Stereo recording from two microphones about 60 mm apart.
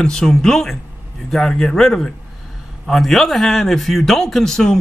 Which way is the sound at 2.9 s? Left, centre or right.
Centre.